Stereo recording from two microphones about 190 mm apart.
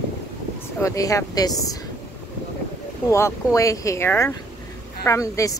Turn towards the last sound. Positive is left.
turn(degrees=15)  # may be behind; listen again after turning